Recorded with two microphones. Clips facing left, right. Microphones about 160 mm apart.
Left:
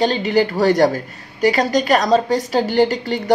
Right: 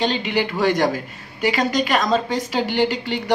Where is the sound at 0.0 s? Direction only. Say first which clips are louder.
Left 5 dB; 40° left (ahead or behind).